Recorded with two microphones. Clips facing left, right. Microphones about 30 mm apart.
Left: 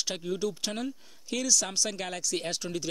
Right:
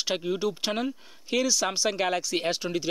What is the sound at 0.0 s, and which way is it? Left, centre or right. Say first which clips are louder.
Speech: right 4 dB; right.